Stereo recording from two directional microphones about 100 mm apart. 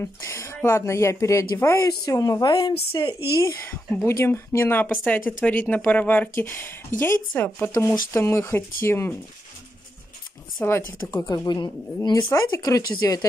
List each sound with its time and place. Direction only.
0.0 s speech: 30° left (ahead or behind)
1.8 s speech: 35° left (ahead or behind)
2.5 s a woman's voice: 55° left (ahead or behind)
4.0 s speech: 30° left (ahead or behind)
10.6 s speech: 25° left (ahead or behind)
11.1 s speech: 35° left (ahead or behind)
12.3 s speech: 30° left (ahead or behind)